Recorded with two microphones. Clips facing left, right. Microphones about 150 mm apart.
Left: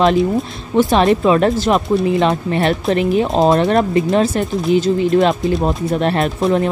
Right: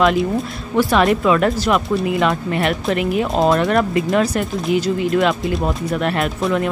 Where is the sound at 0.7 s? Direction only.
25° left (ahead or behind).